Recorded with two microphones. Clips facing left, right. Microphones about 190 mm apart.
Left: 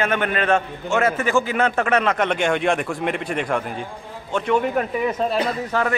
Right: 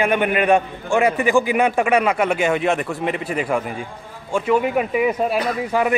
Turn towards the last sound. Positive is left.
turn(degrees=-10)  # may be behind; listen again after turning